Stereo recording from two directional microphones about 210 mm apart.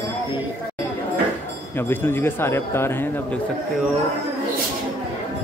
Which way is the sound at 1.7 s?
10° left (ahead or behind).